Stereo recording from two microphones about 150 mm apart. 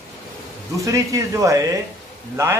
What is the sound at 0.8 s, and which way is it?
Speech, 20° right (ahead or behind).